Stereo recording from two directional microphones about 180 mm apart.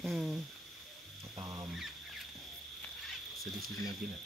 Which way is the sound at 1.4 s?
20° right (ahead or behind).